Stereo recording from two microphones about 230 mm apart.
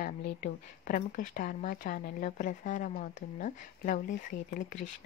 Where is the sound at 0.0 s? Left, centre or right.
Left.